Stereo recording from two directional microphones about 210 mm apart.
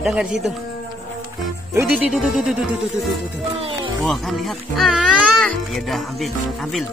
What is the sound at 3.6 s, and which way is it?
Music, 25° right (ahead or behind).